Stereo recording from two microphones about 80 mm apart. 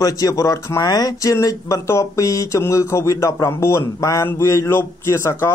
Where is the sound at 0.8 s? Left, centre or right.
Left.